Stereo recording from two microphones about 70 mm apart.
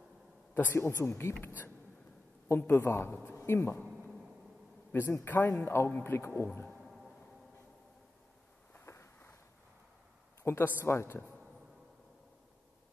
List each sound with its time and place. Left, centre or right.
0.6 s speech: left
2.4 s a man's voice: left
4.9 s speech: left
6.7 s a sound: centre
8.7 s a sound: left
10.4 s speech: left